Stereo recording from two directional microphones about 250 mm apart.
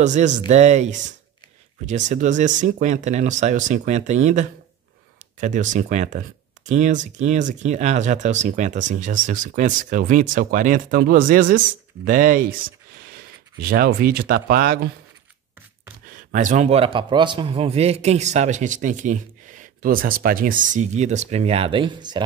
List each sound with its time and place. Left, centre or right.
0.0 s a man's voice: right
16.1 s a man's voice: right